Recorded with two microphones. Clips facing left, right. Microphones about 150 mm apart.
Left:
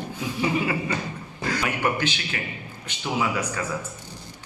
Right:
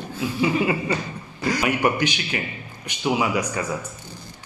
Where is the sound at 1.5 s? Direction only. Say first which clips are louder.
Right 4 dB; 15° right (ahead or behind).